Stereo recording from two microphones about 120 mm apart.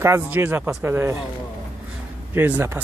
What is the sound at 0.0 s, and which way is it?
Speech, 20° right (ahead or behind).